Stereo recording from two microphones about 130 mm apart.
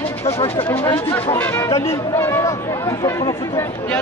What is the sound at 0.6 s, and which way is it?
Speech, 20° left (ahead or behind).